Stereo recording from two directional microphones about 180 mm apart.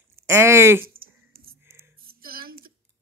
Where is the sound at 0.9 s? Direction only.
55° right (ahead or behind).